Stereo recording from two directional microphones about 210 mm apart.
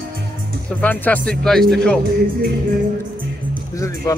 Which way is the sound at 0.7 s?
10° left (ahead or behind).